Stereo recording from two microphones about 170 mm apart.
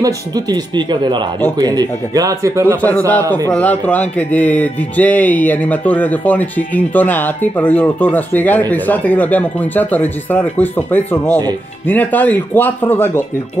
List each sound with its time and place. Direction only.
0.0 s speech: 25° right (ahead or behind)
3.4 s speech: 10° left (ahead or behind)